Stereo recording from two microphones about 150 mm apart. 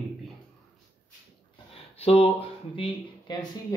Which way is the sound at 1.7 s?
40° left (ahead or behind).